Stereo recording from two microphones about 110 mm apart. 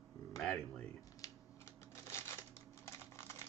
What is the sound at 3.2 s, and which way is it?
Typing, 25° left (ahead or behind).